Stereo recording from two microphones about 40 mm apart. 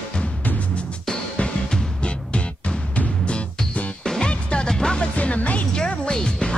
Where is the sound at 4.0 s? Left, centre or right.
Centre.